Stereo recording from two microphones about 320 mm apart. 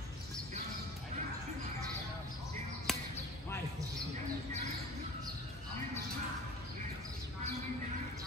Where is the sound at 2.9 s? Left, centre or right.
Centre.